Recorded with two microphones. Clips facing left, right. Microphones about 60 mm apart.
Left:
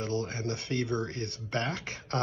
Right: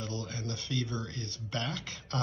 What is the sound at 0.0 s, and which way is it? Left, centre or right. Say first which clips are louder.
Speech: left 6 dB; left.